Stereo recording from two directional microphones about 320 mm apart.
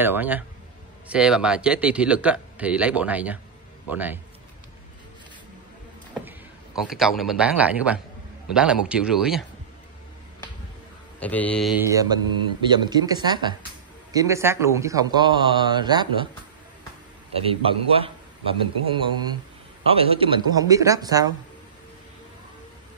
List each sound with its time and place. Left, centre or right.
0.0 s speech: centre
6.9 s speech: centre
11.1 s a man's voice: centre
17.4 s a man's voice: centre